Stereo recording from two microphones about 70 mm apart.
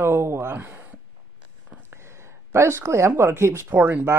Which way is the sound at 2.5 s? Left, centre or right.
Right.